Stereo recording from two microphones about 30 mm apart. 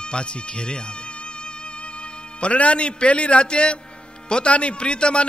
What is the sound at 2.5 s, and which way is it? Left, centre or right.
A man's voice, left.